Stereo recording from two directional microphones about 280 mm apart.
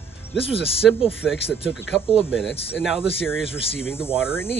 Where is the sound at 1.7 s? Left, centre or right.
Centre.